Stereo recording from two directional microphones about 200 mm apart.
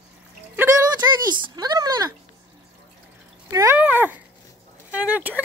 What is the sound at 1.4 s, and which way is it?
Speech, 20° right (ahead or behind).